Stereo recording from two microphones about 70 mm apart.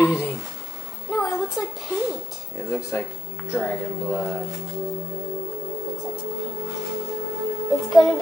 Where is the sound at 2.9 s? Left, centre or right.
Left.